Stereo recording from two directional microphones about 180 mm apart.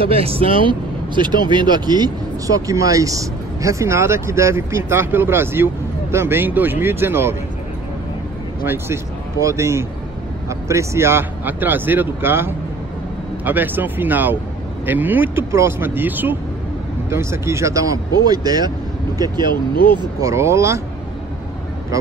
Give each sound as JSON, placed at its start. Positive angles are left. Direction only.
{"t": 0.0, "sound": "speech", "side_deg": -30}
{"t": 8.6, "sound": "speech", "side_deg": -15}
{"t": 13.5, "sound": "speech", "side_deg": -10}
{"t": 19.5, "sound": "speech", "side_deg": 55}
{"t": 20.0, "sound": "speech", "side_deg": -20}